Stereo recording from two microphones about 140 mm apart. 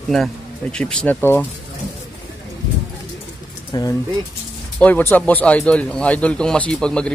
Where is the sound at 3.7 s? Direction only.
30° left (ahead or behind).